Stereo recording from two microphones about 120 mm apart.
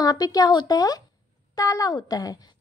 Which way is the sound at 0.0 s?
30° left (ahead or behind).